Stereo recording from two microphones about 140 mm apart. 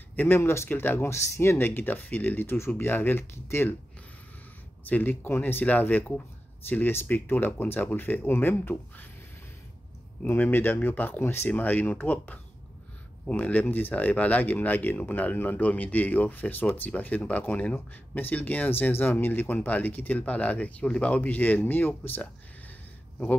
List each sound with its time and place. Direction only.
0.1 s speech: 15° left (ahead or behind)
4.8 s speech: 15° left (ahead or behind)
10.2 s speech: 15° left (ahead or behind)